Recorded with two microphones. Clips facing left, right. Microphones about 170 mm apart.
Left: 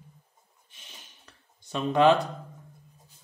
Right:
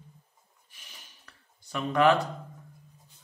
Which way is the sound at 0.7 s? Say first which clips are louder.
Left 2 dB; 25° left (ahead or behind).